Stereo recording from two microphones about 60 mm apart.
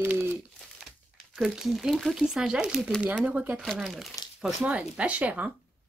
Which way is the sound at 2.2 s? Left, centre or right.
Centre.